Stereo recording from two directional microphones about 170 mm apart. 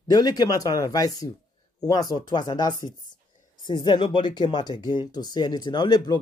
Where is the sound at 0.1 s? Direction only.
25° left (ahead or behind).